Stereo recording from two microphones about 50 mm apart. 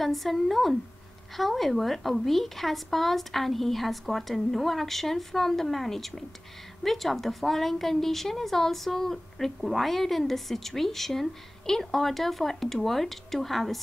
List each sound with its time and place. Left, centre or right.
0.0 s a woman's voice: centre